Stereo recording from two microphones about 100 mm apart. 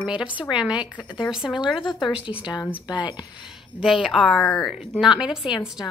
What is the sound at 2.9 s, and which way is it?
Speech, 50° left (ahead or behind).